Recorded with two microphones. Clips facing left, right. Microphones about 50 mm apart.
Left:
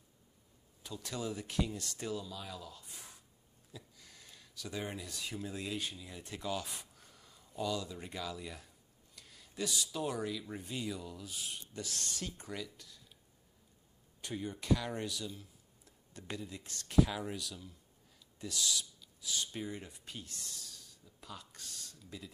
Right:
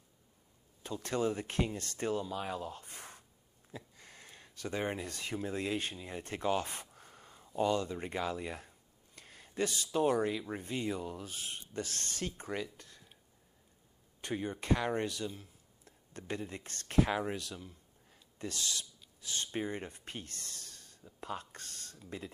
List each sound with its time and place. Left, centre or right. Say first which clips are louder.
0.8 s speech: right 7 dB; right
14.2 s speech: right 3 dB; right